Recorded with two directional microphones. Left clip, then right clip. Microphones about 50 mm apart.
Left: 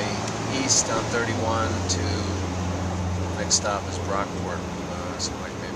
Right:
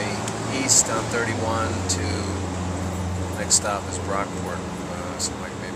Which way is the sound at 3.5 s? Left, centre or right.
Centre.